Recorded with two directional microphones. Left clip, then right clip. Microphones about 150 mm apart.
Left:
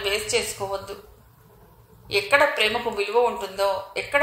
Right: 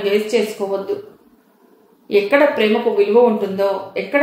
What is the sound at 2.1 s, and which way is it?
Speech, 40° left (ahead or behind).